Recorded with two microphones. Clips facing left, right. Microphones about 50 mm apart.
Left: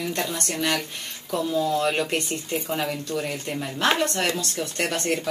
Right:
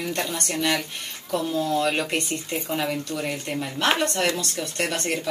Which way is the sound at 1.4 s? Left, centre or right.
Centre.